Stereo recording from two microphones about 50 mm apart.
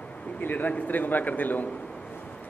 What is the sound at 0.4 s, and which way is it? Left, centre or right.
A man's voice, left.